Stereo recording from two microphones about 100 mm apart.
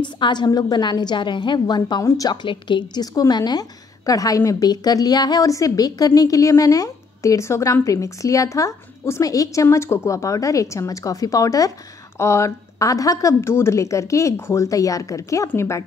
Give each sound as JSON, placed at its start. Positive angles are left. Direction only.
{"t": 0.0, "sound": "a woman's voice", "side_deg": 50}
{"t": 2.0, "sound": "a woman's voice", "side_deg": 35}
{"t": 2.4, "sound": "a woman's voice", "side_deg": 50}